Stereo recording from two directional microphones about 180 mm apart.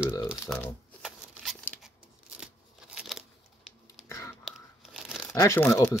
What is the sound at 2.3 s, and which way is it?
Scissors, 5° right (ahead or behind).